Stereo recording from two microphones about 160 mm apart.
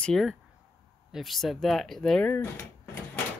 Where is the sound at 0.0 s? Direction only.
Centre (ahead or behind).